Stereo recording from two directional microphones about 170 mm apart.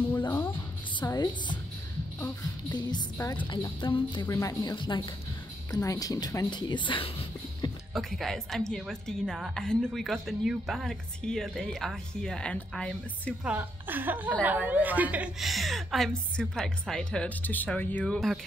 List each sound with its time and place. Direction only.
0.9 s music: 25° left (ahead or behind)
2.7 s speech: 25° left (ahead or behind)
7.9 s a woman's voice: centre (ahead or behind)
13.4 s a woman's voice: 10° right (ahead or behind)